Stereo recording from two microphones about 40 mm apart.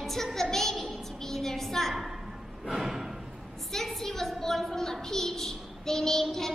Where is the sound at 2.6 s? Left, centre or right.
Centre.